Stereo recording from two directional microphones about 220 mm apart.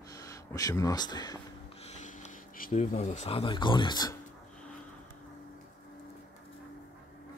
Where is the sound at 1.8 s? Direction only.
35° left (ahead or behind).